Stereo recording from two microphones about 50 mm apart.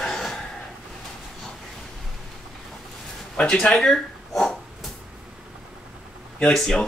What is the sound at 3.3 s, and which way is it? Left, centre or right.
Speech, centre.